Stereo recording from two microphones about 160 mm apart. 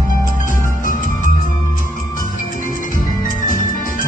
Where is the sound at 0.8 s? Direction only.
55° left (ahead or behind).